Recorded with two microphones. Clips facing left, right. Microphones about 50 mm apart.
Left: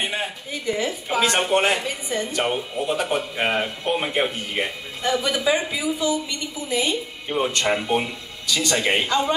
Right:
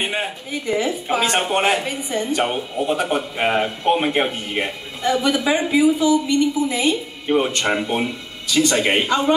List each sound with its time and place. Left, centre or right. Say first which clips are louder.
0.7 s a woman's voice: right 4 dB; right